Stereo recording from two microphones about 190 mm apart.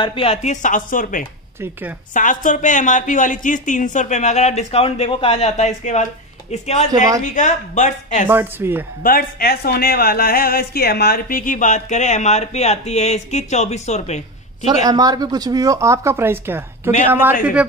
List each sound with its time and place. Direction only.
0.0 s speech: 30° left (ahead or behind); by 1.2 s 45° left (ahead or behind)
1.6 s speech: 10° right (ahead or behind)
2.1 s speech: 40° left (ahead or behind)
8.3 s speech: 10° right (ahead or behind)
9.0 s speech: 50° left (ahead or behind); by 14.2 s 35° left (ahead or behind)
14.7 s speech: 20° right (ahead or behind)